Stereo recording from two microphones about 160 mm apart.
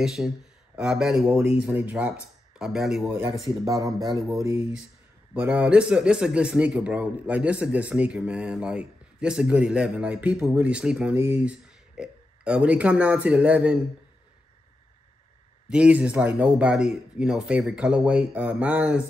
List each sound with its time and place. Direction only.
0.0 s speech: centre (ahead or behind)
3.6 s speech: 20° right (ahead or behind)
15.7 s speech: 5° right (ahead or behind)